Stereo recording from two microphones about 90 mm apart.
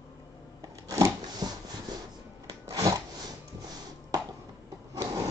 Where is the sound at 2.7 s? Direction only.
40° right (ahead or behind).